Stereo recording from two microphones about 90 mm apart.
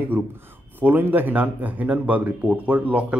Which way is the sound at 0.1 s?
20° right (ahead or behind).